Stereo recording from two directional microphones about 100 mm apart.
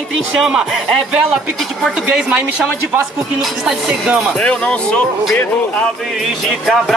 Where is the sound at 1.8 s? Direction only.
10° right (ahead or behind).